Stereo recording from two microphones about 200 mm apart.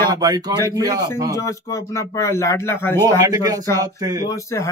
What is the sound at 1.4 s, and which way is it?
Speech, 15° left (ahead or behind).